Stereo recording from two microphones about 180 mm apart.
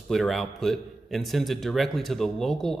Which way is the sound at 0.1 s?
Centre (ahead or behind).